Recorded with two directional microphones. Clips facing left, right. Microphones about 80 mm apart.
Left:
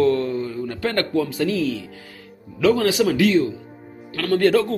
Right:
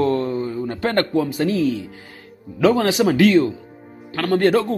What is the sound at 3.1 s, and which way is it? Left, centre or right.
Speech, right.